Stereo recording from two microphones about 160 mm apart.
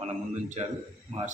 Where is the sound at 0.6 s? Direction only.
40° right (ahead or behind).